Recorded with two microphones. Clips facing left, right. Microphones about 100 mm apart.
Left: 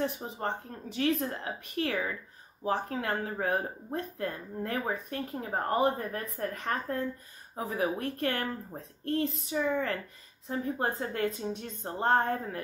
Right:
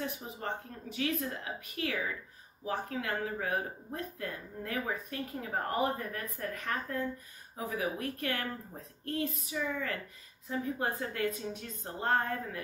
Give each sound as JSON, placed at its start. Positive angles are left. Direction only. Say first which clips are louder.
{"t": 0.2, "sound": "speech", "louder": "left 4 dB", "side_deg": 50}